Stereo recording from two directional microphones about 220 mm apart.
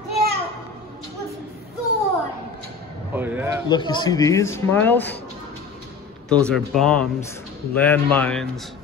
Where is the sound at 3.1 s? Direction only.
10° right (ahead or behind).